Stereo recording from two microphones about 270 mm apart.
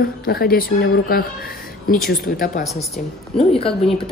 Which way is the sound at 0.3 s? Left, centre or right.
Left.